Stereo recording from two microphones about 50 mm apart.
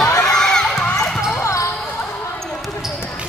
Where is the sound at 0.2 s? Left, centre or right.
Centre.